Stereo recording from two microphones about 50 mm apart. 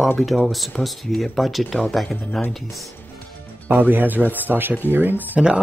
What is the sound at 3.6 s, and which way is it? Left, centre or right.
Speech, right.